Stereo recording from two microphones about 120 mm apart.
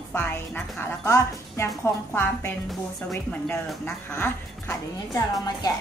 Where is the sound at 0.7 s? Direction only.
25° left (ahead or behind).